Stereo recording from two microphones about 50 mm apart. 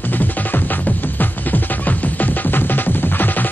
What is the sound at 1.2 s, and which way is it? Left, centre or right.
Music, left.